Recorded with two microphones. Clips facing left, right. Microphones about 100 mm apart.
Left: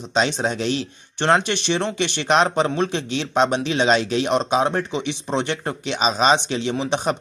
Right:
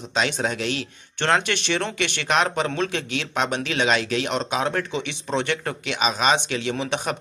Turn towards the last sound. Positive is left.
turn(degrees=25)  # may be behind; listen again after turning